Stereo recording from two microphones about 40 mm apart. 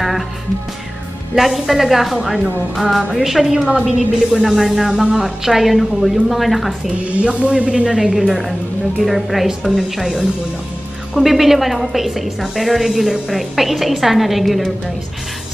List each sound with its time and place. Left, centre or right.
1.3 s a woman's voice: centre
3.6 s a man's voice: right
4.3 s a woman's voice: centre
7.2 s a man's voice: right
7.7 s a woman's voice: centre